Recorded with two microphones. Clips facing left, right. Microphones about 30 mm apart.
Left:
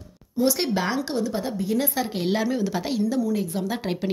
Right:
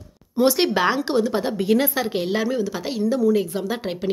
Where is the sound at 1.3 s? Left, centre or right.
Right.